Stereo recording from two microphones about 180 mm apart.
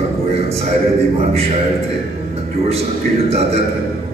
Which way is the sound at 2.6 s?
35° right (ahead or behind).